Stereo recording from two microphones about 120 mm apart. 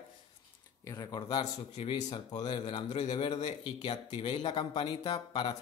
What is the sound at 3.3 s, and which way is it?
Speech, 65° left (ahead or behind).